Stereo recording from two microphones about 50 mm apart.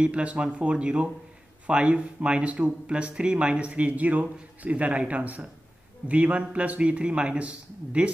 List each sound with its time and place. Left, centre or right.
0.0 s speech: right